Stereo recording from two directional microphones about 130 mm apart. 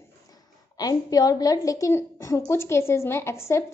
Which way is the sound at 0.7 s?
30° left (ahead or behind).